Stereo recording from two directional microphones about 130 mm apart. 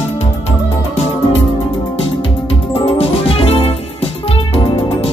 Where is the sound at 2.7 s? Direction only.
45° left (ahead or behind).